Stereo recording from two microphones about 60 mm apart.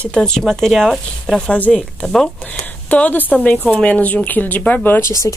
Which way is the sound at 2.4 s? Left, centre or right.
Left.